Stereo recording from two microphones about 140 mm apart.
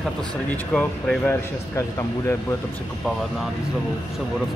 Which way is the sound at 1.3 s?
20° left (ahead or behind).